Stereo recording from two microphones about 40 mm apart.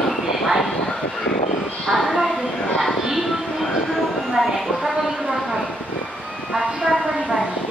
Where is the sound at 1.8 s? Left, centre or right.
Centre.